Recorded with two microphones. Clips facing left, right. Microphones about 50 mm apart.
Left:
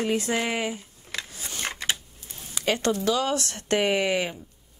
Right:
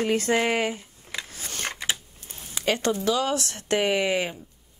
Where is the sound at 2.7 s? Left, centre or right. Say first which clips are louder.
Even; right.